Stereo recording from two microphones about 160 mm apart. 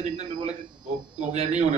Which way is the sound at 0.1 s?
45° right (ahead or behind).